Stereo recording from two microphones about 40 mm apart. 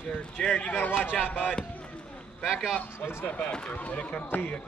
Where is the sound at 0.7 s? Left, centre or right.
Left.